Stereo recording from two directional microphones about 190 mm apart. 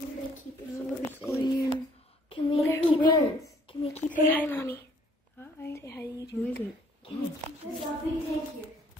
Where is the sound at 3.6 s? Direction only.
30° left (ahead or behind).